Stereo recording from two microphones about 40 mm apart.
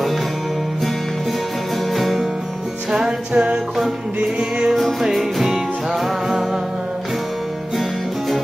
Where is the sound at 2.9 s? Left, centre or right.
Centre.